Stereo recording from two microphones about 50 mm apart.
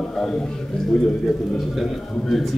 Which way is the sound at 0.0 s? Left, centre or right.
Centre.